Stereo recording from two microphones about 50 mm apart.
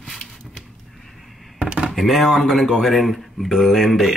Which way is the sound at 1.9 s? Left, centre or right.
Centre.